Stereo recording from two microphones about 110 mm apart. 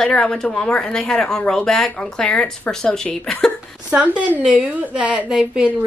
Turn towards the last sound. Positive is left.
turn(degrees=-5)  # may be behind; listen again after turning